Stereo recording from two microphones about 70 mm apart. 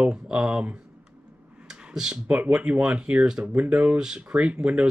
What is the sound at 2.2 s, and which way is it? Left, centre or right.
Speech, right.